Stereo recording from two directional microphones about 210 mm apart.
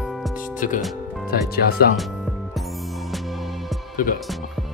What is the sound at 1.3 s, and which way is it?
Speech, 45° left (ahead or behind).